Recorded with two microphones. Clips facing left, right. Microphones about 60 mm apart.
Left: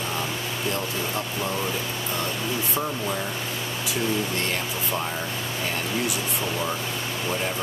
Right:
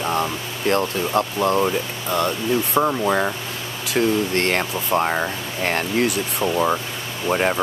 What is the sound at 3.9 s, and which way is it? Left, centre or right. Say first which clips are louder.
Speech: right 8 dB; right.